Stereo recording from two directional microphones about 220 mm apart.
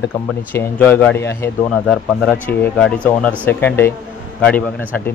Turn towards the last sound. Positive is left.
turn(degrees=5)  # may be behind; listen again after turning